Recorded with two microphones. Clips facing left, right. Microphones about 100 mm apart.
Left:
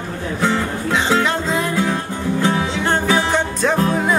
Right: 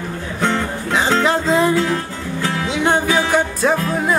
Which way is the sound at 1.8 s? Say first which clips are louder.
Right 1 dB; 20° left (ahead or behind).